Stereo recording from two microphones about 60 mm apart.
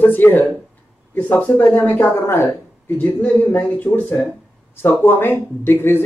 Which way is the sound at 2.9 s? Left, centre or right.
Left.